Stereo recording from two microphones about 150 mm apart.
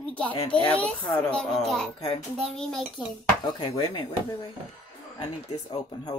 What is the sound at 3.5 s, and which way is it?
Speech, 30° left (ahead or behind).